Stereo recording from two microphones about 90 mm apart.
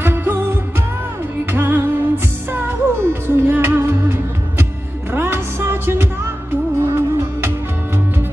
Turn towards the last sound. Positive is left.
turn(degrees=-25)  # may be behind; listen again after turning